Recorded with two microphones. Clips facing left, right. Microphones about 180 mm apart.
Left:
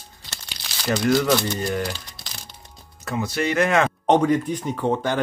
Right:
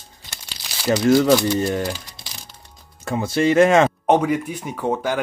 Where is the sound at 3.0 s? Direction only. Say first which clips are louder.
Right 5 dB; 25° right (ahead or behind).